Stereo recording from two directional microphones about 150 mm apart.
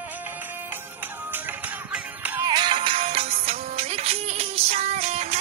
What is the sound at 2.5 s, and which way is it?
Music, 30° right (ahead or behind).